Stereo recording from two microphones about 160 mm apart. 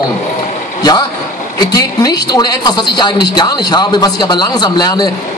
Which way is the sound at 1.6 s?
25° left (ahead or behind).